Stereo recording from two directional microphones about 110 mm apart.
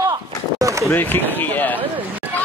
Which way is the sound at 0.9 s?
15° left (ahead or behind).